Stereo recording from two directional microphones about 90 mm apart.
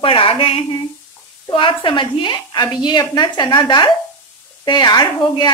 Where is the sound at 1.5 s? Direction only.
70° left (ahead or behind).